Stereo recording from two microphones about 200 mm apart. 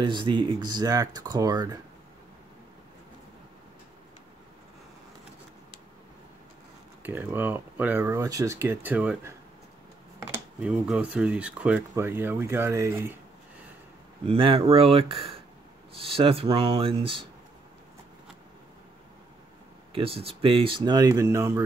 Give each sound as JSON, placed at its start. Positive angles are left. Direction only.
{"t": 0.0, "sound": "speech", "side_deg": -20}
{"t": 7.0, "sound": "speech", "side_deg": -10}
{"t": 10.3, "sound": "speech", "side_deg": -5}
{"t": 14.2, "sound": "speech", "side_deg": -25}
{"t": 19.9, "sound": "speech", "side_deg": -30}